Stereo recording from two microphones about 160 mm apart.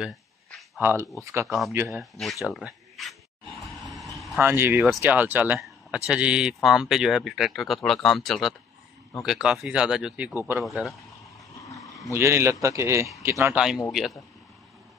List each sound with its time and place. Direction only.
0.7 s speech: 15° right (ahead or behind)
1.9 s a sound: centre (ahead or behind)
4.4 s speech: 15° right (ahead or behind)
12.1 s speech: 15° right (ahead or behind)